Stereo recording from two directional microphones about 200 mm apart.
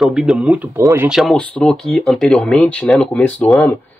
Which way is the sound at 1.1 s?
Centre (ahead or behind).